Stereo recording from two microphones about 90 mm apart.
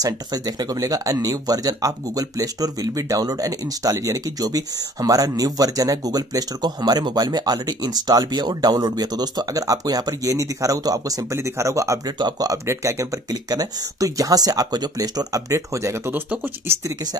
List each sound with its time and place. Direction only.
0.0 s speech: 45° right (ahead or behind)
12.2 s speech: 50° right (ahead or behind)
16.1 s speech: 20° right (ahead or behind)
16.8 s speech: 50° right (ahead or behind)